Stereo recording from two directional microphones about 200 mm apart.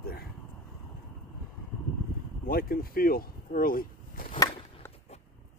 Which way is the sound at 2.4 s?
45° left (ahead or behind).